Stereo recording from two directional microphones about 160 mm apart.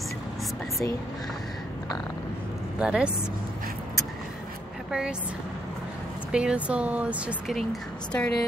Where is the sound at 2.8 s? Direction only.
5° right (ahead or behind).